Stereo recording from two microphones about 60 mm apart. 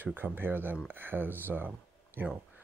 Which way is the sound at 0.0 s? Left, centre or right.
Right.